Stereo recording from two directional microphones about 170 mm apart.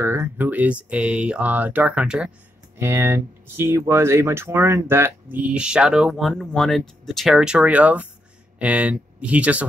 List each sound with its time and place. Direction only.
0.0 s speech: 15° right (ahead or behind)